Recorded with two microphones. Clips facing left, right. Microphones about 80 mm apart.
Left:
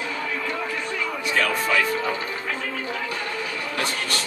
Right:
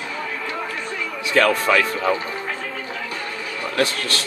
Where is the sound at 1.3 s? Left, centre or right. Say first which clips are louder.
Right 7 dB; right.